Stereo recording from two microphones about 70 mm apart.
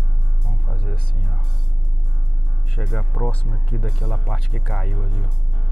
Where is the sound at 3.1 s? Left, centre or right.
Centre.